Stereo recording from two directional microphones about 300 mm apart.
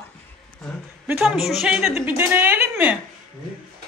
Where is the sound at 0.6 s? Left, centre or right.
Centre.